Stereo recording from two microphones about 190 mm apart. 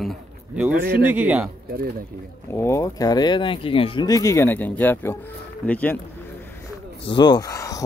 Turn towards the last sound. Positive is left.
turn(degrees=15)  # may be behind; listen again after turning